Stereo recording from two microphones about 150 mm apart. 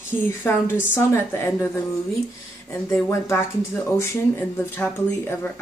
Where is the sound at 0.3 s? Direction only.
15° left (ahead or behind).